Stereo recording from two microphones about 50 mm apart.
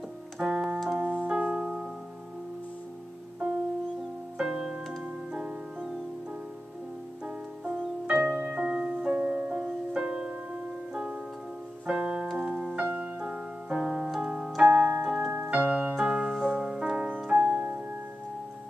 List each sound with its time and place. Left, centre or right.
0.4 s keyboard: centre
0.9 s keyboard: right
1.3 s music: centre
3.4 s music: right
4.4 s music: centre
7.2 s music: right
9.9 s music: centre
11.8 s piano: right
12.7 s music: right
13.2 s keyboard: centre
14.2 s piano: centre
14.7 s keyboard: right
15.0 s keyboard: centre
16.0 s music: centre